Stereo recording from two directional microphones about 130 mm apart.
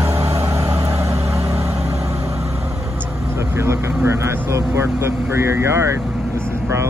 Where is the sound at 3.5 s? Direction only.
20° right (ahead or behind).